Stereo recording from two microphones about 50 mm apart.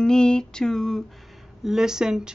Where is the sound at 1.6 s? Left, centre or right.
Centre.